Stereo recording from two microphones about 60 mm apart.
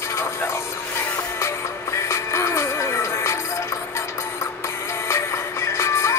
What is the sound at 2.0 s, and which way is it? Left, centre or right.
Music, left.